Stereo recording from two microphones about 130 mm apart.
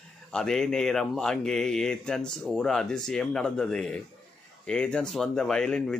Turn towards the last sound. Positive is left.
turn(degrees=5)  # may be behind; listen again after turning